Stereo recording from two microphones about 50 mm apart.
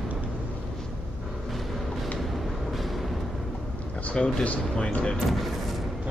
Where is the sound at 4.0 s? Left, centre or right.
Left.